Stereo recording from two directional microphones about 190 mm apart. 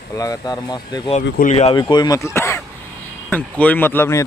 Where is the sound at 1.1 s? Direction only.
35° left (ahead or behind).